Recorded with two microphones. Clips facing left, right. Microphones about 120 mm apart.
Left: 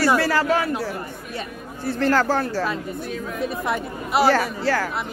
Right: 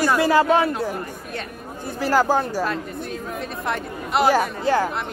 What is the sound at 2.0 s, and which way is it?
Speech, 10° right (ahead or behind).